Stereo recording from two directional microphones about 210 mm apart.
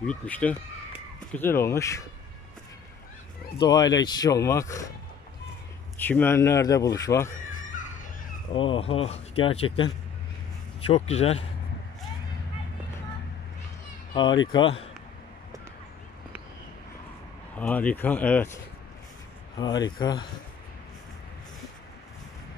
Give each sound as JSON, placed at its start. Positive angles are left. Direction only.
{"t": 0.0, "sound": "speech", "side_deg": 5}
{"t": 3.5, "sound": "speech", "side_deg": 20}
{"t": 5.9, "sound": "speech", "side_deg": 10}
{"t": 7.2, "sound": "a sound", "side_deg": 40}
{"t": 8.5, "sound": "speech", "side_deg": 25}
{"t": 10.9, "sound": "speech", "side_deg": 30}
{"t": 14.1, "sound": "speech", "side_deg": 20}
{"t": 17.6, "sound": "speech", "side_deg": 5}
{"t": 19.6, "sound": "speech", "side_deg": 20}